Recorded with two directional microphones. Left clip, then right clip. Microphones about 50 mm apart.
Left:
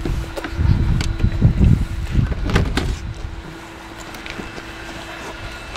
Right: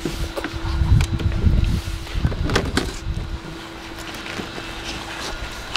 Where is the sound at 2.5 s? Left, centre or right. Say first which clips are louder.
Right 1 dB; centre.